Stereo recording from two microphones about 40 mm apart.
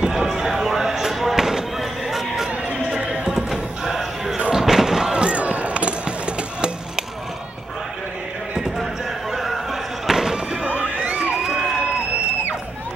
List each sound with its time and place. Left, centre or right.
0.0 s basketball bounce: centre
3.1 s music: centre
4.6 s slam: centre
5.2 s a sound: right
9.3 s a sound: centre
10.3 s music: right